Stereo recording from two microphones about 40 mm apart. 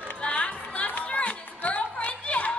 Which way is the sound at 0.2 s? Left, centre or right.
Left.